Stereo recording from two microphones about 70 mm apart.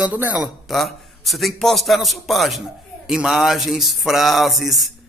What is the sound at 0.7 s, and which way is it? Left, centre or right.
A man's voice, centre.